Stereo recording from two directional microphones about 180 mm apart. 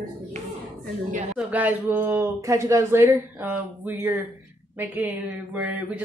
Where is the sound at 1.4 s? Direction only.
10° right (ahead or behind).